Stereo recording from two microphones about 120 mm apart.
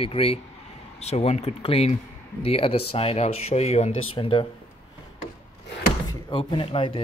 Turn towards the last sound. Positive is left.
turn(degrees=50)  # may be behind; listen again after turning